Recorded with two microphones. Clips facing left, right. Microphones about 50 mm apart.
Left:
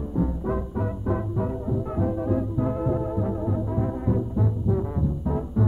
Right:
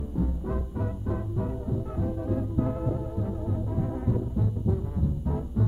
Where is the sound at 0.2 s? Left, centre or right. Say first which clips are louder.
Left 5 dB; centre.